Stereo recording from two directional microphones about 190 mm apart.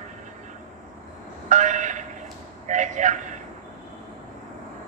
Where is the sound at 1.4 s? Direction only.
40° right (ahead or behind).